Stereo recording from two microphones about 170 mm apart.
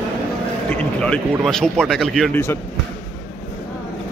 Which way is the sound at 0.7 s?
5° left (ahead or behind).